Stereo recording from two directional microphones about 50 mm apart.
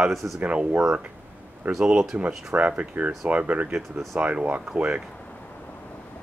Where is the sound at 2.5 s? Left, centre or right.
Right.